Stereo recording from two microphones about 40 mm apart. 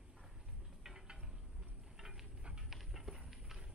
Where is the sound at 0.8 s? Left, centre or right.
Centre.